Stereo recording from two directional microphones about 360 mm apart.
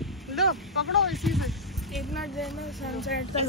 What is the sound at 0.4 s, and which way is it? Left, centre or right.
Vehicle, centre.